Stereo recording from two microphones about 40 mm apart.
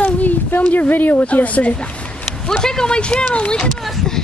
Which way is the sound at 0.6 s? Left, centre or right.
Left.